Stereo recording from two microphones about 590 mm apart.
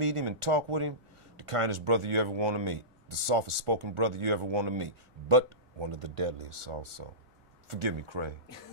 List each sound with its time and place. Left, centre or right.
0.0 s speech: right